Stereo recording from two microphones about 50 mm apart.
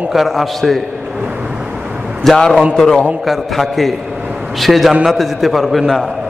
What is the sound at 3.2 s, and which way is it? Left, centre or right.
A man's voice, centre.